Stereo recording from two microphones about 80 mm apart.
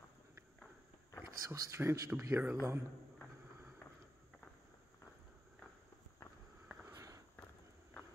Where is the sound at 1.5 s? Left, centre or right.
Right.